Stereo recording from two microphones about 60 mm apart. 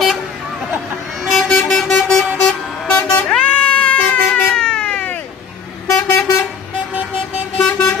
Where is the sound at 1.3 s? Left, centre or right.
Centre.